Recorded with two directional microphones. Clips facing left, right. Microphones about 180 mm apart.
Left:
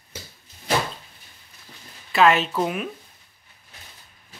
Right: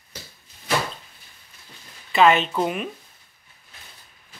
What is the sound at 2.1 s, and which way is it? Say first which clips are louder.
Speech: right 1 dB; centre (ahead or behind).